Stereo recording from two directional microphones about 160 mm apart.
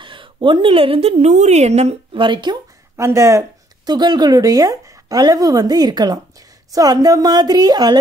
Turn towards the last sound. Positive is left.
turn(degrees=-25)  # may be behind; listen again after turning